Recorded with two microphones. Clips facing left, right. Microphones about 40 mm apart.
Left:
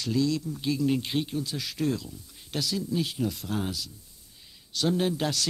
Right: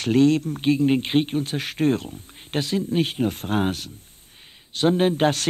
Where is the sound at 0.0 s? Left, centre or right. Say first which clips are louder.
Right 9 dB; right.